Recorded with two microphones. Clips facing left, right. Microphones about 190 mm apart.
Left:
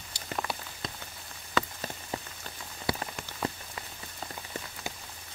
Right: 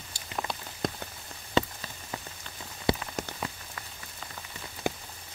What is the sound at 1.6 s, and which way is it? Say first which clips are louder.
Rain on surface: right 4 dB; 30° right (ahead or behind).